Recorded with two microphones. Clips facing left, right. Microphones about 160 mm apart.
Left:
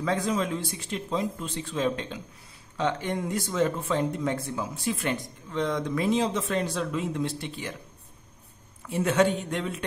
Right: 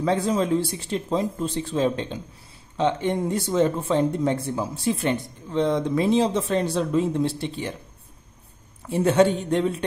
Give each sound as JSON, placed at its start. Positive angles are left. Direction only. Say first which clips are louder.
{"t": 0.0, "sound": "speech", "louder": "right 5 dB", "side_deg": -30}
{"t": 8.8, "sound": "speech", "louder": "right 5 dB", "side_deg": -35}